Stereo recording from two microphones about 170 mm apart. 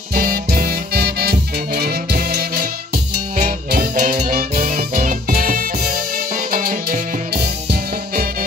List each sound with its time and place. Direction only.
0.1 s music: 60° right (ahead or behind)